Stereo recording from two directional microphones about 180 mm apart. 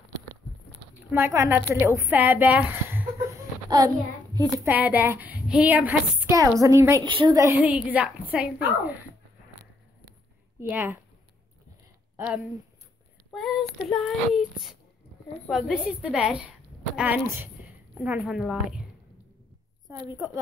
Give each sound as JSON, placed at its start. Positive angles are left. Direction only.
{"t": 1.1, "sound": "a woman's voice", "side_deg": -15}
{"t": 4.6, "sound": "a woman's voice", "side_deg": -10}
{"t": 7.6, "sound": "a woman's voice", "side_deg": -5}
{"t": 10.6, "sound": "a woman's voice", "side_deg": -10}
{"t": 13.3, "sound": "child singing", "side_deg": 0}
{"t": 15.4, "sound": "child singing", "side_deg": 0}
{"t": 16.9, "sound": "a woman's voice", "side_deg": -10}
{"t": 17.6, "sound": "a sound", "side_deg": -5}
{"t": 18.0, "sound": "child singing", "side_deg": -5}
{"t": 19.9, "sound": "a woman's voice", "side_deg": -15}